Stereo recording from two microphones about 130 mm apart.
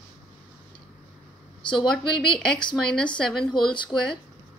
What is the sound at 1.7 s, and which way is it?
A woman's voice, 5° left (ahead or behind).